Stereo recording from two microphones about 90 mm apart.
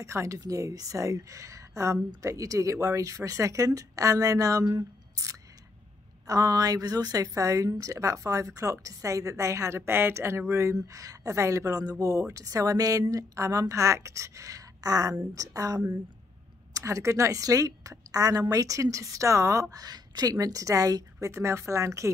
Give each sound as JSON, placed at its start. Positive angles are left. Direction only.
{"t": 0.0, "sound": "a woman's voice", "side_deg": -30}